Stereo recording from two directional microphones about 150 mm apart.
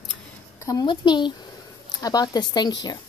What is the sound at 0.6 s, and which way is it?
Speech, 30° left (ahead or behind).